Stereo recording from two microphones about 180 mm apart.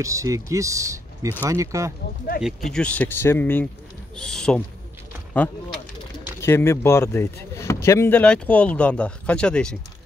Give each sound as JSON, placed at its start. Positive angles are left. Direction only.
{"t": 0.0, "sound": "speech", "side_deg": -15}
{"t": 2.4, "sound": "speech", "side_deg": 0}
{"t": 6.4, "sound": "speech", "side_deg": 15}